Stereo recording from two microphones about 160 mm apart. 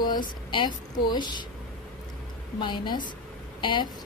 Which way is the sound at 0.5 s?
30° left (ahead or behind).